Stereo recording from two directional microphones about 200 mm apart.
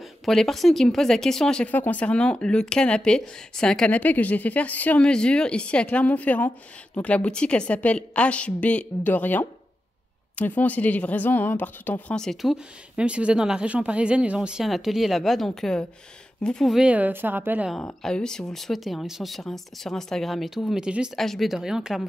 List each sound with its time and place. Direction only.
0.2 s a woman's voice: centre (ahead or behind)